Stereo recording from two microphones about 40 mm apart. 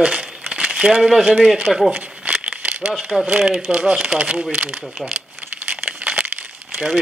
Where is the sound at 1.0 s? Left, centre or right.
Centre.